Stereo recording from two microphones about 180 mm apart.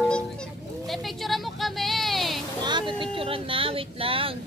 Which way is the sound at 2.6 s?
25° right (ahead or behind).